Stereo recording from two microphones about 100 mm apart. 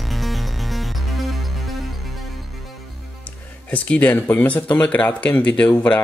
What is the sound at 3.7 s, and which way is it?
Speech, 15° left (ahead or behind).